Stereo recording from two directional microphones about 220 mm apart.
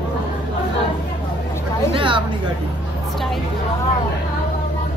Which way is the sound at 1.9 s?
20° right (ahead or behind).